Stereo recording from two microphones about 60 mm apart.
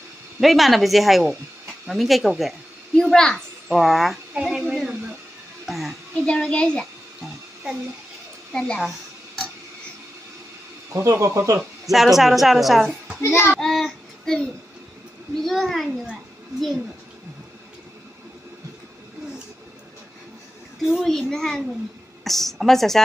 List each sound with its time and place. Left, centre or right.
0.4 s a woman's voice: centre
3.0 s a woman's voice: centre
3.6 s a woman's voice: centre
5.7 s music: centre
6.2 s a woman's voice: centre
8.5 s a woman's voice: centre
10.9 s speech: right
11.8 s a woman's voice: centre
13.2 s child singing: left
13.6 s a sound: centre
15.4 s a woman's voice: centre
20.8 s a woman's voice: centre